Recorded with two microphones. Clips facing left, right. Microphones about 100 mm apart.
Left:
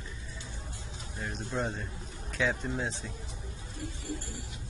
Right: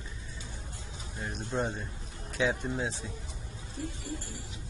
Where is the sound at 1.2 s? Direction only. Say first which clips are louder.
Right 1 dB; 15° right (ahead or behind).